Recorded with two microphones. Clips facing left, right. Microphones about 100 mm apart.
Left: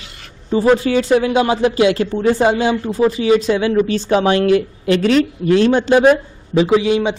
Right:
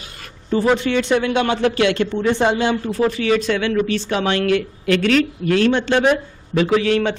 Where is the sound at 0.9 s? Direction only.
35° left (ahead or behind).